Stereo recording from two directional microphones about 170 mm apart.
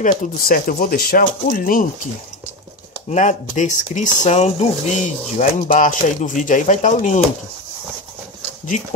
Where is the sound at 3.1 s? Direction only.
45° left (ahead or behind).